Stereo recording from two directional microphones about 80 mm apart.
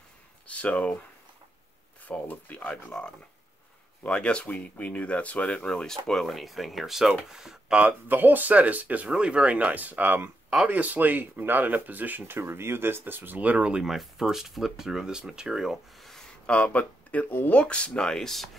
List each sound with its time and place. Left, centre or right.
0.5 s speech: centre
2.0 s speech: left; by 7.8 s centre
7.8 s speech: right
13.8 s speech: centre